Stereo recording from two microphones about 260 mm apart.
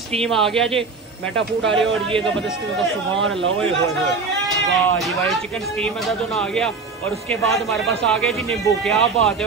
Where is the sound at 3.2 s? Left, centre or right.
Right.